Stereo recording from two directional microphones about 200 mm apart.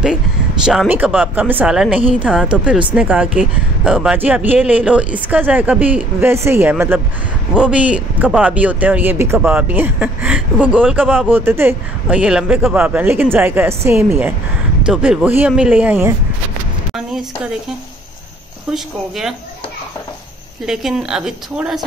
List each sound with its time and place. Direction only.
0.7 s a woman's voice: 5° right (ahead or behind)
18.7 s a woman's voice: centre (ahead or behind)
20.6 s a woman's voice: centre (ahead or behind)